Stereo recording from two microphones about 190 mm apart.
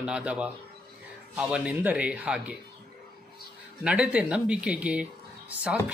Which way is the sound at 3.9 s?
5° right (ahead or behind).